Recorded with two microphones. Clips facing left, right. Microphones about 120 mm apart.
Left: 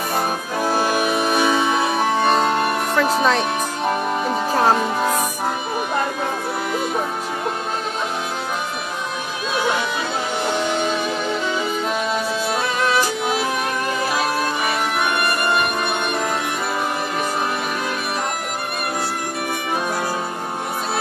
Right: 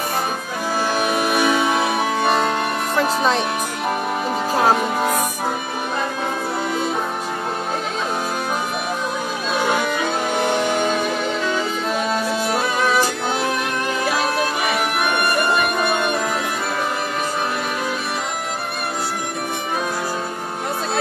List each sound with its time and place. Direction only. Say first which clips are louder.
0.7 s music: even; 15° left (ahead or behind)
1.0 s music: even; 5° right (ahead or behind)
3.0 s speech: left 1 dB; centre (ahead or behind)
4.3 s music: even; 5° right (ahead or behind)
10.5 s music: right 2 dB; 55° right (ahead or behind)